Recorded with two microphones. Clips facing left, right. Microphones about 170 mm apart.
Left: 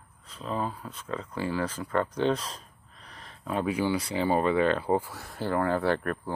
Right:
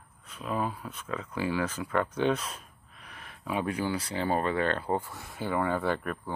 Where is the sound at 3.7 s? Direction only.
10° left (ahead or behind).